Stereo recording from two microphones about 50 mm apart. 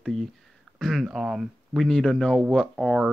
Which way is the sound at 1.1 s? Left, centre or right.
Centre.